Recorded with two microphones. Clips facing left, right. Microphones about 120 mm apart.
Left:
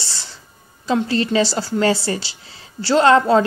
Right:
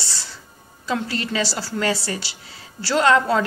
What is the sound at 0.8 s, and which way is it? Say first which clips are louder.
A woman's voice: left 6 dB; 25° left (ahead or behind).